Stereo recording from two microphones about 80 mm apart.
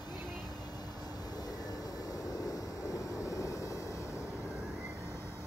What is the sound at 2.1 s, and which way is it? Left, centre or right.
Vehicle, left.